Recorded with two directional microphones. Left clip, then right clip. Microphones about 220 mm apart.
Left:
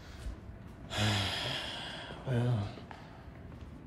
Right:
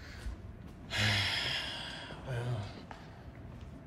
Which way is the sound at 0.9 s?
15° left (ahead or behind).